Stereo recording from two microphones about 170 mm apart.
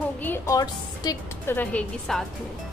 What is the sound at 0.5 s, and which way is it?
A woman's voice, 20° left (ahead or behind).